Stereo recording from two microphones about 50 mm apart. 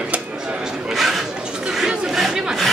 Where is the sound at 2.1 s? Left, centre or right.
Centre.